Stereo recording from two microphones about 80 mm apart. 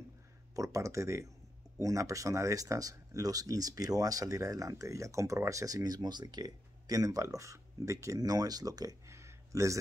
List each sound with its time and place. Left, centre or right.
0.6 s speech: right